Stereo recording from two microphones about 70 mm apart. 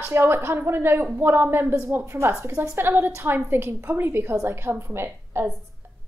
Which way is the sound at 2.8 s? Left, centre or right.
Right.